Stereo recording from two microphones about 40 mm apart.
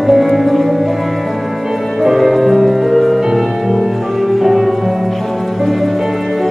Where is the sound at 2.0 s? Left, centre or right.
Centre.